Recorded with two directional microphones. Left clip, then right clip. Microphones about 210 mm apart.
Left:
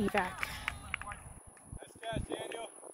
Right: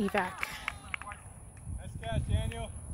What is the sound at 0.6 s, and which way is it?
Run, 50° left (ahead or behind).